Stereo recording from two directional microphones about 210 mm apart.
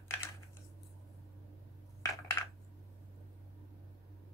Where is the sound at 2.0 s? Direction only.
15° left (ahead or behind).